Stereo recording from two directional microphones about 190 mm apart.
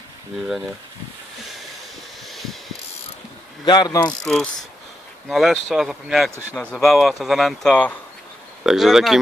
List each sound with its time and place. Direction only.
2.2 s a sound: centre (ahead or behind)
3.6 s pulleys: 20° left (ahead or behind)
4.2 s speech: 5° left (ahead or behind)